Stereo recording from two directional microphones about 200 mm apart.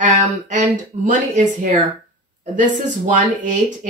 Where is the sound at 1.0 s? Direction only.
40° right (ahead or behind).